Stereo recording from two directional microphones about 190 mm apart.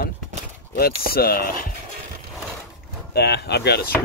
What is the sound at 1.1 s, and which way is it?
Speech, 55° left (ahead or behind).